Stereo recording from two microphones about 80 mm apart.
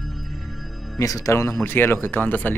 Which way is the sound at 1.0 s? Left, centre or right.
Left.